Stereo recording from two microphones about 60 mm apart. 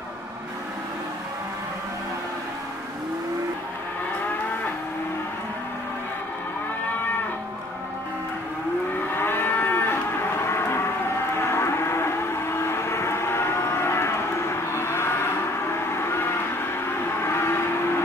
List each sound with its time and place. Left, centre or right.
9.1 s moo: left
11.4 s vehicle: left
14.7 s a sound: left
15.9 s train: left
17.2 s vehicle: left